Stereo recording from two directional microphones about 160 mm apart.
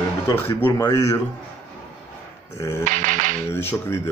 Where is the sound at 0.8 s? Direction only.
25° left (ahead or behind).